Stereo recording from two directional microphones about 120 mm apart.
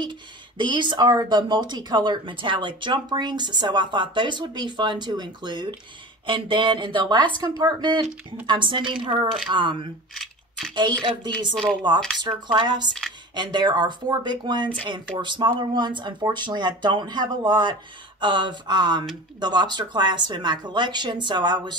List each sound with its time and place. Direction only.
0.0 s a woman's voice: 40° right (ahead or behind)
11.5 s speech: 5° left (ahead or behind)
12.2 s speech: 40° right (ahead or behind)